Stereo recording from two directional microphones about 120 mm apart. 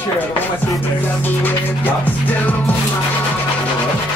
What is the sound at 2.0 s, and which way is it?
Music, 15° left (ahead or behind).